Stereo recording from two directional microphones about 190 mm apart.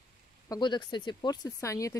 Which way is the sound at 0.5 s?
25° left (ahead or behind).